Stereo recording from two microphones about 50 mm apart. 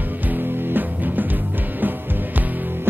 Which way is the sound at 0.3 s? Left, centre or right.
Right.